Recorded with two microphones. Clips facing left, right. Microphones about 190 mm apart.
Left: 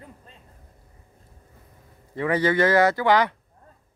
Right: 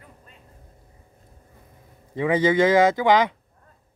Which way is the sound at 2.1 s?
15° right (ahead or behind).